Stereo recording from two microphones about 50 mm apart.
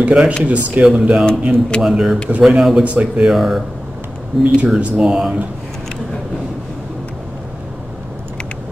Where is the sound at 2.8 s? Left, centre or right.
Right.